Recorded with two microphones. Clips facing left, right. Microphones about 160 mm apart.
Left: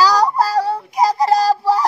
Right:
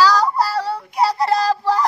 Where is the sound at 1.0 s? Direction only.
40° left (ahead or behind).